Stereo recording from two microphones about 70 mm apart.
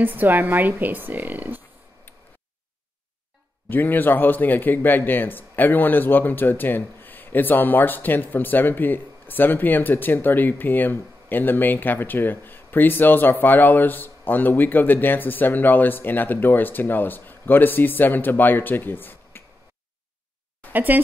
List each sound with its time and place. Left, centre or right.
0.0 s a woman's voice: right
2.1 s tick: left
3.6 s speech: left
20.7 s a woman's voice: right